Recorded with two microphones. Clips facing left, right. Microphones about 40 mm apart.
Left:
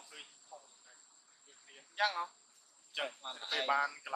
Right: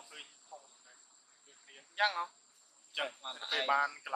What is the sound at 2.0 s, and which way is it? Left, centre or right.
Speech, right.